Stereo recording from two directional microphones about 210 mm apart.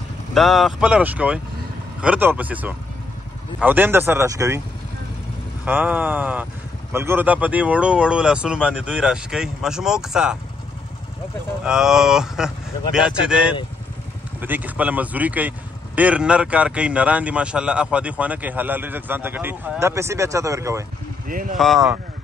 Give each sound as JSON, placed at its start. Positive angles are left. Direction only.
{"t": 0.3, "sound": "speech", "side_deg": 0}
{"t": 5.7, "sound": "speech", "side_deg": -10}
{"t": 11.6, "sound": "speech", "side_deg": -5}
{"t": 21.3, "sound": "speech", "side_deg": -40}
{"t": 21.5, "sound": "speech", "side_deg": 0}